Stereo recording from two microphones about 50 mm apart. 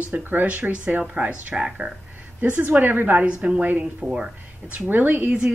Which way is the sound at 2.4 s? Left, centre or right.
Right.